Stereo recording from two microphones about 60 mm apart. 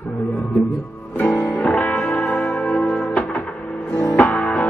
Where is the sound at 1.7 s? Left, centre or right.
Left.